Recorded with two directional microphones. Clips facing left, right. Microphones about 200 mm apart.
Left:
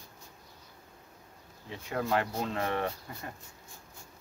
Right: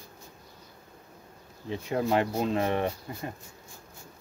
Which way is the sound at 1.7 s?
20° right (ahead or behind).